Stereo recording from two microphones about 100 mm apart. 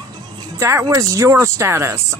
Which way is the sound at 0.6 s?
30° right (ahead or behind).